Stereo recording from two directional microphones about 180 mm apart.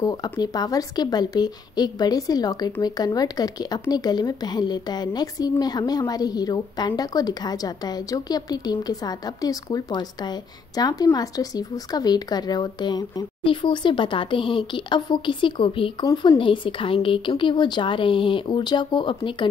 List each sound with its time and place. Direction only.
0.0 s a woman's voice: 20° left (ahead or behind)